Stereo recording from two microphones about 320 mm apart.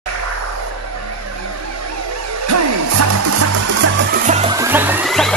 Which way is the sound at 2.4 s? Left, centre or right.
Right.